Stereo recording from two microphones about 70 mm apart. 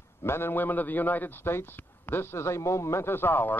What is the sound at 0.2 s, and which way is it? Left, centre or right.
A man's voice, left.